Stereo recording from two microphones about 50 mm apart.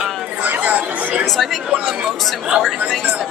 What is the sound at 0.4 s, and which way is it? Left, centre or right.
Chatter, right.